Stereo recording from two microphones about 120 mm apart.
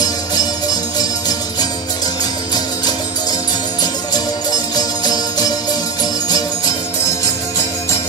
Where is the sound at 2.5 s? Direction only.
35° left (ahead or behind).